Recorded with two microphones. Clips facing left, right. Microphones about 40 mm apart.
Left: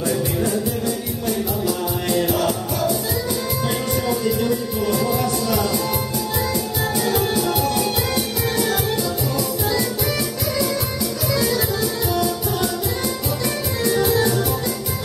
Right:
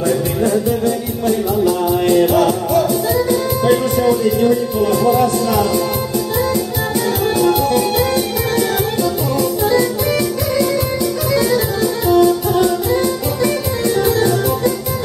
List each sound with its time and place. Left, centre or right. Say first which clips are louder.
1.6 s music: right 8 dB; right
3.7 s music: right 9 dB; centre
7.4 s music: right 7 dB; centre
9.4 s music: right 9 dB; right
13.8 s music: right 4 dB; centre